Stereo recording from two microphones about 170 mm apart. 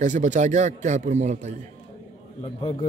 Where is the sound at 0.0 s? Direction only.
45° right (ahead or behind).